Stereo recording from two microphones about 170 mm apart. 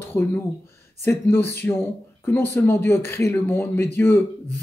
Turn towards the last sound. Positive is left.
turn(degrees=15)  # may be behind; listen again after turning